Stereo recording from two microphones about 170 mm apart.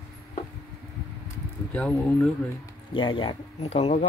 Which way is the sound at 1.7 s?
10° left (ahead or behind).